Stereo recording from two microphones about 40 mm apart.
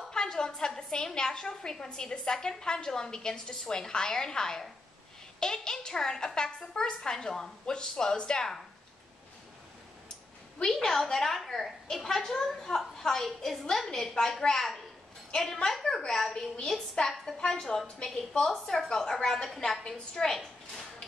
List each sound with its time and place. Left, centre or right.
0.1 s a woman's voice: centre
10.6 s a woman's voice: centre
17.1 s a woman's voice: centre
17.5 s a woman's voice: centre